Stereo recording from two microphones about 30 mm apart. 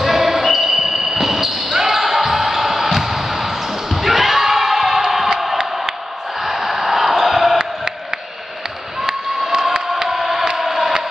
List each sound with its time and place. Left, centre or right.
0.0 s basketball bounce: centre
6.4 s a sound: centre
9.0 s crowd: centre
10.6 s chant: centre